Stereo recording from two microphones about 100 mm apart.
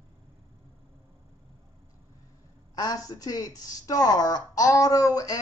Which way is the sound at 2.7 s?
40° left (ahead or behind).